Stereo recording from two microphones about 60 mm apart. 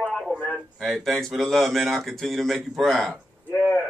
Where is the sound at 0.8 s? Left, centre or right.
Centre.